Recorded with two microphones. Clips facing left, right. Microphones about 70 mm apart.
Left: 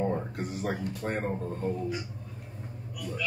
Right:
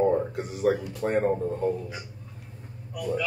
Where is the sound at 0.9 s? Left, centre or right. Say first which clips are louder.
Right 7 dB; centre.